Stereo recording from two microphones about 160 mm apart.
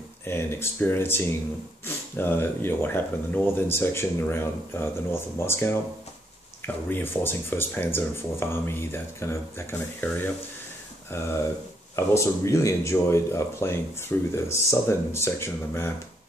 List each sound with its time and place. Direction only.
0.2 s speech: 15° left (ahead or behind)